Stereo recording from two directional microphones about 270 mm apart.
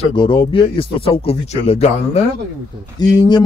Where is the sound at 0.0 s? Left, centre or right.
Centre.